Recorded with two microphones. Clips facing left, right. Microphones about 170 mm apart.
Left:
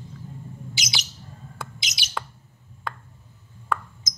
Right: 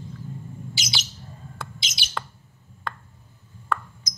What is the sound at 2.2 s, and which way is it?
Bird, 5° left (ahead or behind).